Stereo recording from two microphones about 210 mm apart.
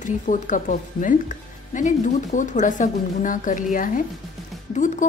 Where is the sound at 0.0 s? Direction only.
35° left (ahead or behind).